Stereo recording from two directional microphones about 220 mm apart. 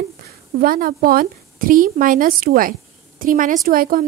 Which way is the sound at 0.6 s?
40° right (ahead or behind).